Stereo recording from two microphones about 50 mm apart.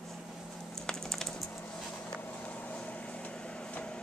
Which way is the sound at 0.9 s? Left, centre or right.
Centre.